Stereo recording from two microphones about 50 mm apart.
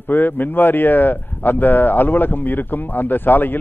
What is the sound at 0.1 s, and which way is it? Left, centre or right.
Speech, left.